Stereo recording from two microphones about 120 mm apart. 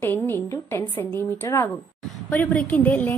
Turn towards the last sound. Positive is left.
turn(degrees=10)  # may be behind; listen again after turning